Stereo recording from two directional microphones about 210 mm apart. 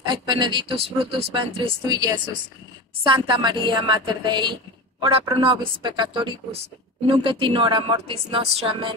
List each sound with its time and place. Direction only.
0.0 s speech: 20° right (ahead or behind)